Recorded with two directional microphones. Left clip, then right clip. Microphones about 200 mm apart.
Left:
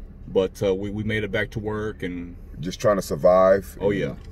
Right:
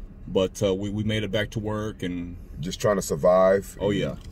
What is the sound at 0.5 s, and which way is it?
Speech, 25° right (ahead or behind).